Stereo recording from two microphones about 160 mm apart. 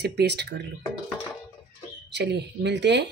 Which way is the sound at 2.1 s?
90° right.